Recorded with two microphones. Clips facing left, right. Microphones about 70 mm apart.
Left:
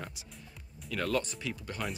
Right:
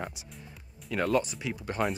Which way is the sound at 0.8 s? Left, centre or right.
Right.